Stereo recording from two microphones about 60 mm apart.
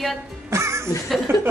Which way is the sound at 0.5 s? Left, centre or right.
Right.